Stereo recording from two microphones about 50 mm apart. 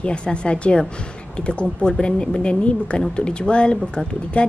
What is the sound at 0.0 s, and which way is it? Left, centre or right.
Speech, centre.